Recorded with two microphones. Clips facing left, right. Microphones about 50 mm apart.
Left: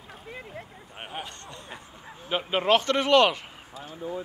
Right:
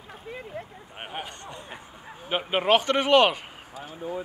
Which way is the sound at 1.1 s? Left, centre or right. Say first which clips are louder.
Right 2 dB; centre.